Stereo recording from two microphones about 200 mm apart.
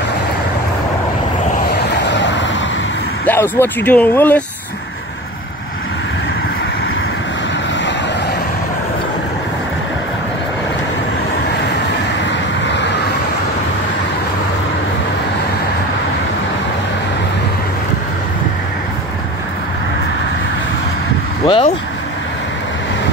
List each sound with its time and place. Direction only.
2.0 s vehicle: 65° left (ahead or behind)
3.3 s speech: 10° left (ahead or behind)
12.3 s vehicle: 60° left (ahead or behind)
21.5 s vehicle: 30° left (ahead or behind)